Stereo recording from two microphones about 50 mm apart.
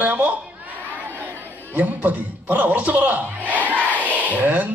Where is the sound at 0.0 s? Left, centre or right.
Right.